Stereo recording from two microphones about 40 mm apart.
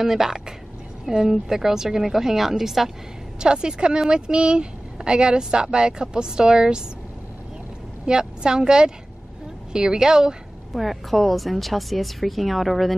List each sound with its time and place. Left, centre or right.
0.0 s a woman's voice: centre
3.3 s speech: right
8.0 s a woman's voice: right
10.7 s a woman's voice: centre